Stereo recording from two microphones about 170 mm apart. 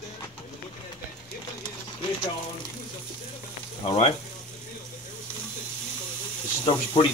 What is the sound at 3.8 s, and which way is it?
Speech, 30° left (ahead or behind).